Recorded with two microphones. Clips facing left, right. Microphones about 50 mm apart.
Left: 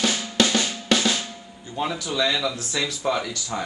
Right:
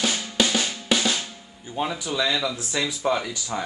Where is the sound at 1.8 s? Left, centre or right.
Centre.